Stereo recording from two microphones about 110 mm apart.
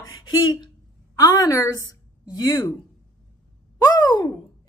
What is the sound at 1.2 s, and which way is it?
Speech, 30° left (ahead or behind).